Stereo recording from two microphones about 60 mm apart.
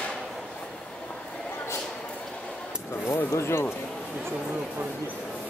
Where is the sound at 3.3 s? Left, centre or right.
Left.